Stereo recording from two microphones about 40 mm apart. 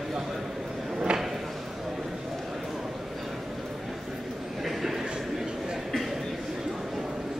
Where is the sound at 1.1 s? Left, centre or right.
Right.